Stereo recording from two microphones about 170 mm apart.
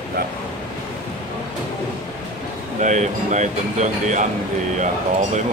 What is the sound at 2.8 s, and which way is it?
Speech, 45° right (ahead or behind).